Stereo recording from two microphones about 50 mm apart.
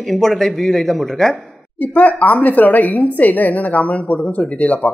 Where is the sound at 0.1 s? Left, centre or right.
Centre.